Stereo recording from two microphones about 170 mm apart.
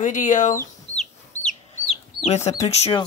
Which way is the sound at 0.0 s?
50° left (ahead or behind).